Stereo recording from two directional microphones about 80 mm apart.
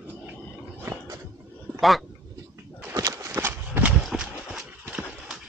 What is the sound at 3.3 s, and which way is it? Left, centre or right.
Horse, right.